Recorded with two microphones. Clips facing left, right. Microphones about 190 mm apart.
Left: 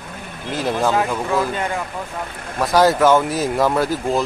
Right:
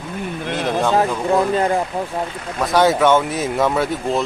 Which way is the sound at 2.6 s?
Centre (ahead or behind).